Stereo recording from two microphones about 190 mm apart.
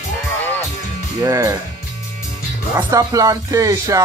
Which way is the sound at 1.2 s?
15° right (ahead or behind).